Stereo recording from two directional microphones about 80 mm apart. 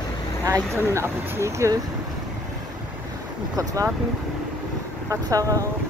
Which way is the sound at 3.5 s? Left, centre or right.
Right.